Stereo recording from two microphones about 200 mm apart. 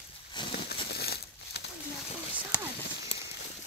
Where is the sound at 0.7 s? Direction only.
55° left (ahead or behind).